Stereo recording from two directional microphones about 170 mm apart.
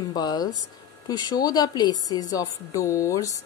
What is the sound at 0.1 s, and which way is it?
A woman's voice, 25° left (ahead or behind).